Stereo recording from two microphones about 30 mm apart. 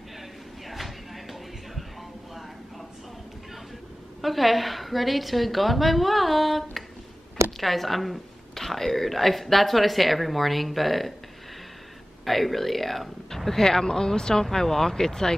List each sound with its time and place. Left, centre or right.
0.7 s a sound: centre
4.2 s a woman's voice: centre
12.3 s speech: centre
13.5 s speech: centre